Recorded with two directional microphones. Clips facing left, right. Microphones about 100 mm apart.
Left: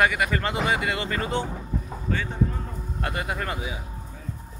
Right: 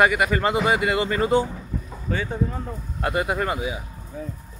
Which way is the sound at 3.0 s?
15° right (ahead or behind).